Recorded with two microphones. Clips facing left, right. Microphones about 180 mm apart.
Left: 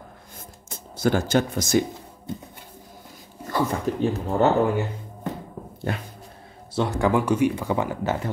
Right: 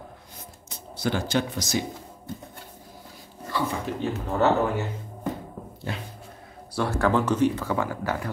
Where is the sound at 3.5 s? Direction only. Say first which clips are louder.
Left 4 dB; 45° left (ahead or behind).